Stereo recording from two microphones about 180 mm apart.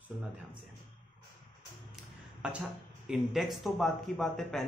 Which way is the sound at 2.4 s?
5° right (ahead or behind).